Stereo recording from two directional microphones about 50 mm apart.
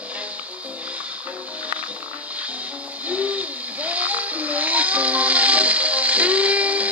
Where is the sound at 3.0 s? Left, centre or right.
Right.